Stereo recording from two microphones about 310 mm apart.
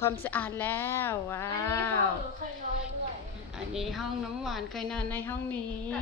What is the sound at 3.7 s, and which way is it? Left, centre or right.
A woman's voice, centre.